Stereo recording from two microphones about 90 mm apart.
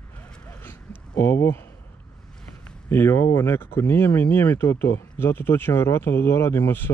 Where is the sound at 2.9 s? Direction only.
25° left (ahead or behind).